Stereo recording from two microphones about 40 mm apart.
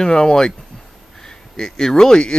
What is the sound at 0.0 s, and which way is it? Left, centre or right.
Speech, centre.